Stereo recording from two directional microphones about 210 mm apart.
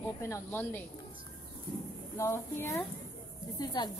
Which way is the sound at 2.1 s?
15° left (ahead or behind).